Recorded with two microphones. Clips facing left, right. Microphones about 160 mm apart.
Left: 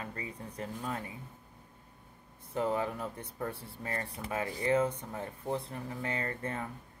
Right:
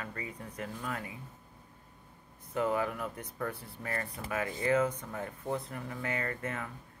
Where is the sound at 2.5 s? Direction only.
30° left (ahead or behind).